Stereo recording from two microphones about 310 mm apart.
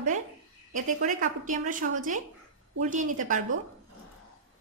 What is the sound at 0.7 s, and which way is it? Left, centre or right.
A woman's voice, right.